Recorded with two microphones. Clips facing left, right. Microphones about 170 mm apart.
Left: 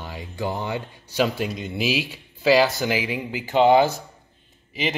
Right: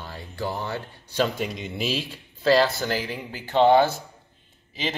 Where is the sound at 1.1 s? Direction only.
5° left (ahead or behind).